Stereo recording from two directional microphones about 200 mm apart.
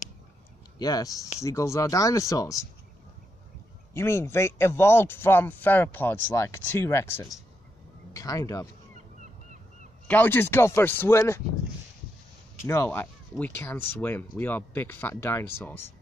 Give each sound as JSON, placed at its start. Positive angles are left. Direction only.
{"t": 0.7, "sound": "a man's voice", "side_deg": 20}
{"t": 3.9, "sound": "a man's voice", "side_deg": 10}
{"t": 10.0, "sound": "a man's voice", "side_deg": 10}
{"t": 12.6, "sound": "a man's voice", "side_deg": 10}